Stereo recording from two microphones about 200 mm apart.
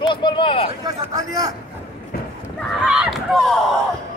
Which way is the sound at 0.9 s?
15° right (ahead or behind).